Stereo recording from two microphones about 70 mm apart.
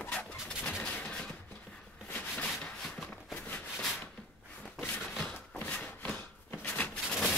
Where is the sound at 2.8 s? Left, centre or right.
Centre.